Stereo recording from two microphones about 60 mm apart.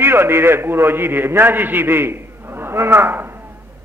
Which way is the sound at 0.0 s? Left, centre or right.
Right.